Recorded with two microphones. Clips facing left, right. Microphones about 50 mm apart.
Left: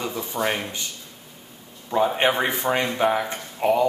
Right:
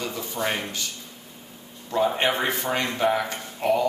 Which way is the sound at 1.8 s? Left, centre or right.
Centre.